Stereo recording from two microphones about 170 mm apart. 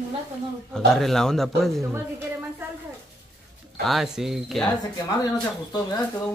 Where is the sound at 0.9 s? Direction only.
5° left (ahead or behind).